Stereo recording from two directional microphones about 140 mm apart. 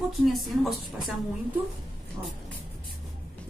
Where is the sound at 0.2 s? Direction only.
Centre (ahead or behind).